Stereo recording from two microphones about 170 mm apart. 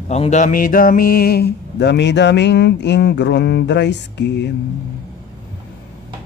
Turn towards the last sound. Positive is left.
turn(degrees=85)